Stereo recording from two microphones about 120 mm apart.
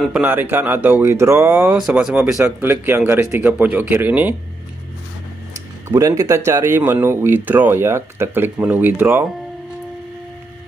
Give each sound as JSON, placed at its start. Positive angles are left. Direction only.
{"t": 0.2, "sound": "speech", "side_deg": -15}
{"t": 1.8, "sound": "speech", "side_deg": -5}
{"t": 2.4, "sound": "speech", "side_deg": -15}
{"t": 5.9, "sound": "speech", "side_deg": -25}